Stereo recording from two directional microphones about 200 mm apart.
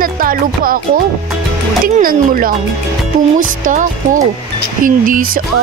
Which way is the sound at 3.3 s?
40° right (ahead or behind).